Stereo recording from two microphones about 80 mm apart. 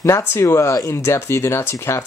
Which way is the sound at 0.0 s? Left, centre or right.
Left.